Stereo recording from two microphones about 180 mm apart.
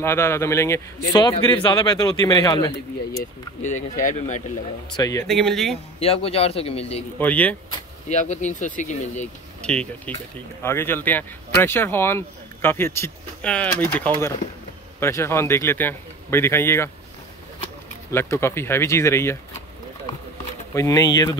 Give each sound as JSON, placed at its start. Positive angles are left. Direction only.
{"t": 0.0, "sound": "a man's voice", "side_deg": 15}
{"t": 3.6, "sound": "speech", "side_deg": 45}
{"t": 4.9, "sound": "a man's voice", "side_deg": 20}
{"t": 5.2, "sound": "speech", "side_deg": 0}
{"t": 5.9, "sound": "speech", "side_deg": 35}
{"t": 7.2, "sound": "speech", "side_deg": 10}
{"t": 8.1, "sound": "speech", "side_deg": 40}
{"t": 9.6, "sound": "speech", "side_deg": 5}
{"t": 18.1, "sound": "speech", "side_deg": 15}
{"t": 20.7, "sound": "a man's voice", "side_deg": 20}